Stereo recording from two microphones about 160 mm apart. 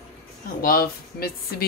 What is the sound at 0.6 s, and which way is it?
Speech, 70° left (ahead or behind).